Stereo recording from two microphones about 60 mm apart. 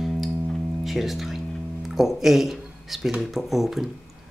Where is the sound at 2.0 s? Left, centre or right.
Centre.